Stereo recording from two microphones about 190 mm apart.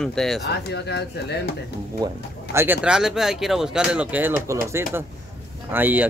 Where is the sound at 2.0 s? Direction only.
20° right (ahead or behind).